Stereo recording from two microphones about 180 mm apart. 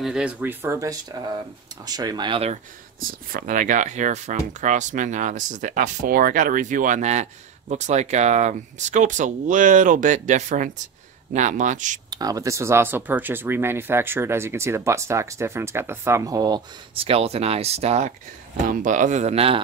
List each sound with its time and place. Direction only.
0.0 s speech: 5° right (ahead or behind); by 2.6 s 35° right (ahead or behind)
3.0 s speech: 50° right (ahead or behind)
12.1 s speech: 20° right (ahead or behind)